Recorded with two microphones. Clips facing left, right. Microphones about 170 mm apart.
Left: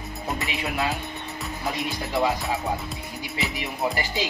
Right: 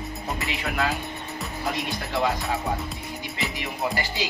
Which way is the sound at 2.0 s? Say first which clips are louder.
Left 2 dB; 20° left (ahead or behind).